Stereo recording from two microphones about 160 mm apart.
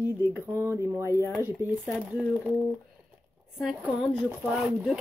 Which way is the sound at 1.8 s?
Centre (ahead or behind).